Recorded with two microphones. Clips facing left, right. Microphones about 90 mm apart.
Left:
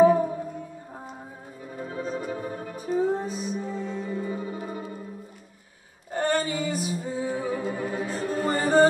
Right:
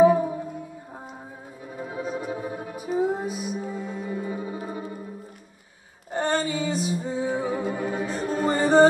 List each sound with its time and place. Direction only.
0.0 s music: 10° right (ahead or behind)
1.8 s music: 10° right (ahead or behind)
6.1 s female singing: 20° right (ahead or behind)
6.6 s music: 20° right (ahead or behind)